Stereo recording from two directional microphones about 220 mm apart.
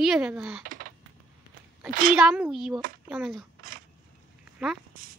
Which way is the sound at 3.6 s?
40° right (ahead or behind).